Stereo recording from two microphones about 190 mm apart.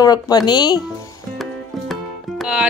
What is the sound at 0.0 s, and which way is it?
Speech, 20° left (ahead or behind).